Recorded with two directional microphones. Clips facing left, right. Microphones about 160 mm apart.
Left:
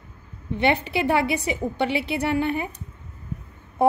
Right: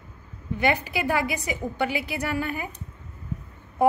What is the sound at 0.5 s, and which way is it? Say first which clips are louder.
A woman's voice: left 3 dB; 25° left (ahead or behind).